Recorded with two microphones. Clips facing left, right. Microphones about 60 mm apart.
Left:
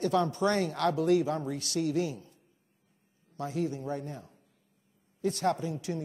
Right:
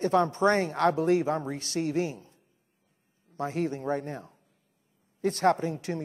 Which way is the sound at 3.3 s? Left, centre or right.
Right.